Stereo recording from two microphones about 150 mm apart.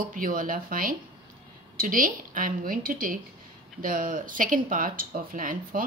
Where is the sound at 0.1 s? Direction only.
65° right (ahead or behind).